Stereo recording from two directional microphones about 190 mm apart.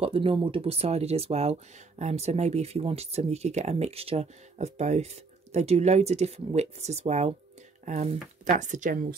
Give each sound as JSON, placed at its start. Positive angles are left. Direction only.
{"t": 0.0, "sound": "speech", "side_deg": -30}